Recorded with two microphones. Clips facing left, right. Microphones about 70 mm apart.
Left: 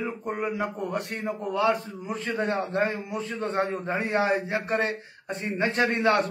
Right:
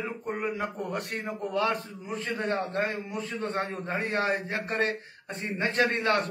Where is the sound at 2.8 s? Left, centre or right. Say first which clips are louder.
Left 3 dB; left.